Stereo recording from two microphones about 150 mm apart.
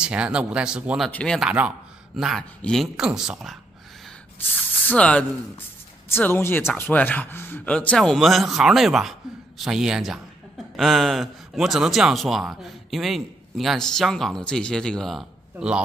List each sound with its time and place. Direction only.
0.0 s speech: 5° right (ahead or behind)
4.6 s speech: 10° left (ahead or behind)